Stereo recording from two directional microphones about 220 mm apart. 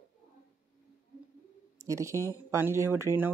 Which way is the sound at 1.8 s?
15° right (ahead or behind).